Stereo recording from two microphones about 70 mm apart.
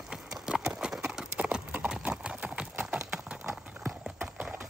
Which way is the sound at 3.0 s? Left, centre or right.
Centre.